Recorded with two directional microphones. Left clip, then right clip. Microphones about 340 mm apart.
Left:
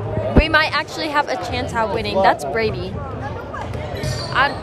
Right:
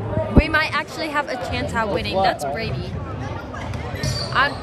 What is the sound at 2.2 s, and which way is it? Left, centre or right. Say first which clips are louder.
Speech: left 5 dB; centre.